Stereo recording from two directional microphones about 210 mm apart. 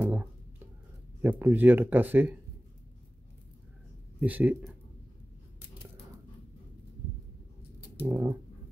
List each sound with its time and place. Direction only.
0.0 s a sound: 10° right (ahead or behind)
1.2 s speech: 10° right (ahead or behind)
4.2 s speech: 5° right (ahead or behind)
8.0 s speech: 10° right (ahead or behind)